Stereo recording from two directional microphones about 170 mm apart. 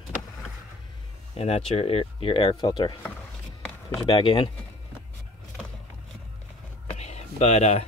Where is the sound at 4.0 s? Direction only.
30° left (ahead or behind).